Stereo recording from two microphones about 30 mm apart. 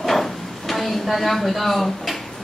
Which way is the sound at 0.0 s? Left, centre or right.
Centre.